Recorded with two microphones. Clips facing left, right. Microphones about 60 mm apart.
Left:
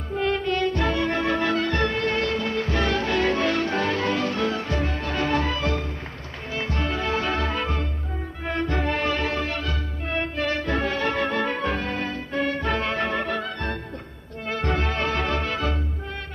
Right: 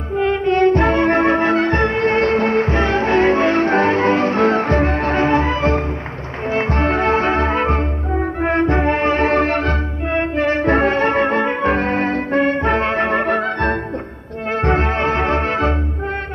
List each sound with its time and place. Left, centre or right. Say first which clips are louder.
0.1 s music: right 7 dB; right
0.6 s music: right 10 dB; right
10.3 s music: right 11 dB; right
14.5 s music: right 8 dB; right